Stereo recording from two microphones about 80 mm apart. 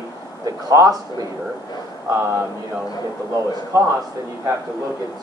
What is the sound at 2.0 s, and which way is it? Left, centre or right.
Speech, right.